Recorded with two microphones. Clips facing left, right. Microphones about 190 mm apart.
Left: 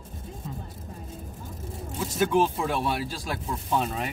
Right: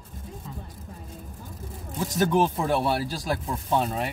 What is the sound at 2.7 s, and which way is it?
Speech, 40° right (ahead or behind).